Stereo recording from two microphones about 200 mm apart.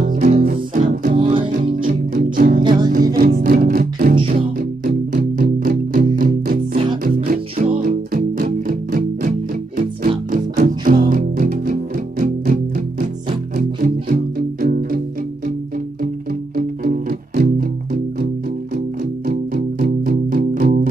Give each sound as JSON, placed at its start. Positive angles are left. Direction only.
{"t": 0.0, "sound": "music", "side_deg": -40}
{"t": 1.1, "sound": "music", "side_deg": -25}
{"t": 1.6, "sound": "music", "side_deg": -45}
{"t": 4.2, "sound": "music", "side_deg": -30}
{"t": 4.6, "sound": "music", "side_deg": -45}
{"t": 13.6, "sound": "music", "side_deg": -45}
{"t": 16.5, "sound": "music", "side_deg": -45}